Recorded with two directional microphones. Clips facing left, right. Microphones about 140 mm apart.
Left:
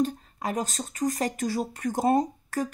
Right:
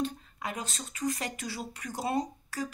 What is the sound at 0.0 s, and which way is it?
Speech, 40° left (ahead or behind).